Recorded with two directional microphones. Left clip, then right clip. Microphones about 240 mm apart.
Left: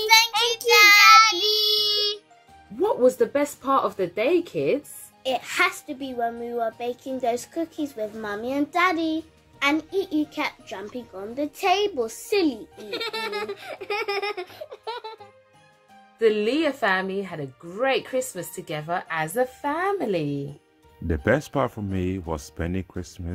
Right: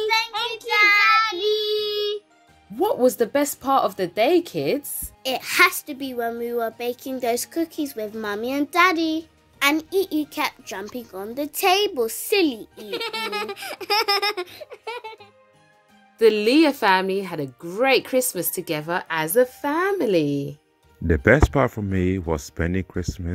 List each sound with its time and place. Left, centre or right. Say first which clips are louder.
0.3 s child singing: left 4 dB; left
1.9 s music: left 1 dB; left
2.8 s a child's voice: even; right
16.2 s a child's voice: right 5 dB; right
21.1 s speech: right 6 dB; centre